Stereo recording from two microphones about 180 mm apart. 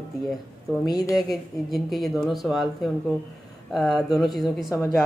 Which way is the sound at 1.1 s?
Centre (ahead or behind).